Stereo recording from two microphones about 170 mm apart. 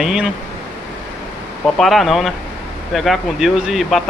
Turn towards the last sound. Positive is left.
turn(degrees=0)  # may be behind; listen again after turning